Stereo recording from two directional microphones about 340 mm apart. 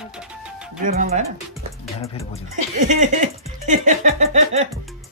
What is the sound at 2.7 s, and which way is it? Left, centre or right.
Speech, right.